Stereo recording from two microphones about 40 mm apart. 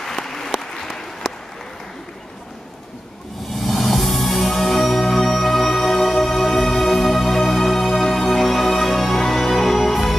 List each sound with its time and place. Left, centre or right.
0.0 s applause: centre
1.2 s applause: centre
3.6 s music: centre